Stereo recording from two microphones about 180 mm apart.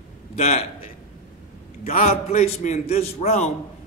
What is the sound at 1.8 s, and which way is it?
Speech, 35° left (ahead or behind).